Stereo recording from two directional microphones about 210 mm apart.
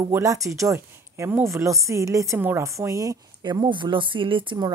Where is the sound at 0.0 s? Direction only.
15° right (ahead or behind).